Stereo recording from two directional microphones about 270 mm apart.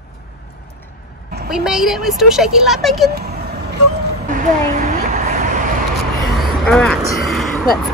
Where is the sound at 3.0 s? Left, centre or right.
Right.